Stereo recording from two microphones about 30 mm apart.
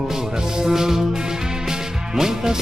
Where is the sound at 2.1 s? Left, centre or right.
Centre.